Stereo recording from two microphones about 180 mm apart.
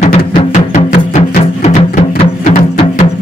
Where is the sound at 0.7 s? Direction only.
40° left (ahead or behind).